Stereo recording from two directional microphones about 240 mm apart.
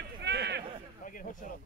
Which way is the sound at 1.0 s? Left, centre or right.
Left.